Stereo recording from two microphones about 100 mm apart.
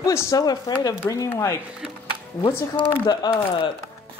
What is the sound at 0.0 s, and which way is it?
Speech, 35° left (ahead or behind).